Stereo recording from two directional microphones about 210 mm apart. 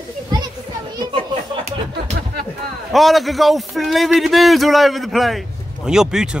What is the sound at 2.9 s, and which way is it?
A man's voice, centre (ahead or behind).